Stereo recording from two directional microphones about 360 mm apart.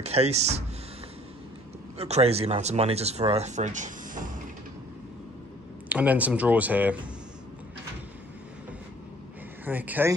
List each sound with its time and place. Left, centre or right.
0.0 s speech: centre
2.0 s speech: centre
5.9 s speech: centre
9.7 s speech: centre